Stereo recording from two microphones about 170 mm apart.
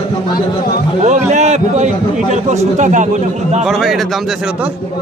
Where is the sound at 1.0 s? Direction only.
45° right (ahead or behind).